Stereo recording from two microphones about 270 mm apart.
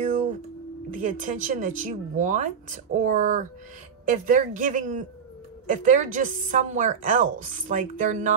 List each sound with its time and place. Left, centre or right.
0.9 s a woman's voice: right